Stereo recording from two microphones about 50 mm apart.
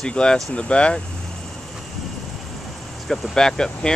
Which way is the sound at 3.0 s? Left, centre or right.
Centre.